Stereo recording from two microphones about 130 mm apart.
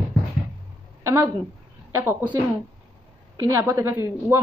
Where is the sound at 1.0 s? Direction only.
15° right (ahead or behind).